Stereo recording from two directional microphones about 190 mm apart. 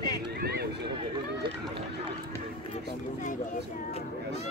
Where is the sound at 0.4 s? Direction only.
55° right (ahead or behind).